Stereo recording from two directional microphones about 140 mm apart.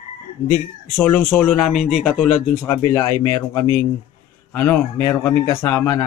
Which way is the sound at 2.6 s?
20° left (ahead or behind).